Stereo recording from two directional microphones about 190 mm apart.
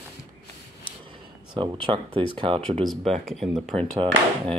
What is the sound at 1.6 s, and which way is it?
Speech, 25° right (ahead or behind).